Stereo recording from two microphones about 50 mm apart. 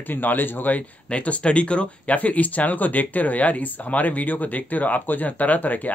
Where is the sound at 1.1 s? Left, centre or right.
Left.